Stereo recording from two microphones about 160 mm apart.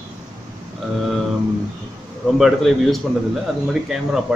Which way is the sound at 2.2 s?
Centre (ahead or behind).